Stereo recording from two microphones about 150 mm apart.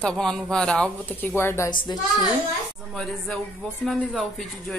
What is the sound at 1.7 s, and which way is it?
Speech, 30° left (ahead or behind).